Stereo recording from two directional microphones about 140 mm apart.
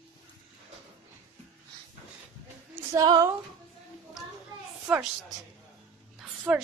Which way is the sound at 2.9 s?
25° right (ahead or behind).